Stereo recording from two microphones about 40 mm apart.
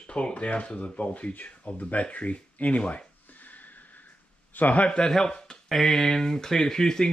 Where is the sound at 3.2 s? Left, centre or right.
Left.